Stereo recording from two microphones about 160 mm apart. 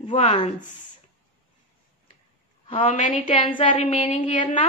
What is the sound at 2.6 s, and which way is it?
A woman's voice, 45° left (ahead or behind).